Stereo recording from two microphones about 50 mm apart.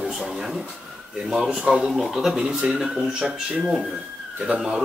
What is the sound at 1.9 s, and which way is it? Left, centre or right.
Speech, centre.